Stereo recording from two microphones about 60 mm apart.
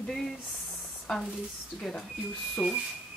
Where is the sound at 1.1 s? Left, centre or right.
Centre.